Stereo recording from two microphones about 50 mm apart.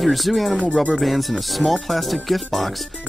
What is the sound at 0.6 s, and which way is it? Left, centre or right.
Speech, left.